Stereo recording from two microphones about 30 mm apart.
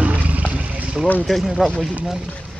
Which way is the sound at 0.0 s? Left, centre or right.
Right.